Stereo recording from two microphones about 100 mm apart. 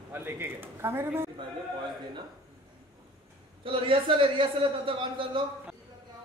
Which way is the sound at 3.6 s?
60° right (ahead or behind).